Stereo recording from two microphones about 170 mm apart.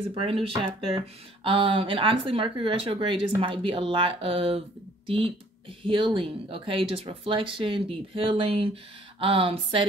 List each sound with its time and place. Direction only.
0.1 s speech: 35° right (ahead or behind)